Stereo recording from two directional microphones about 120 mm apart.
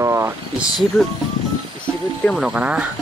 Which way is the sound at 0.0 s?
20° right (ahead or behind).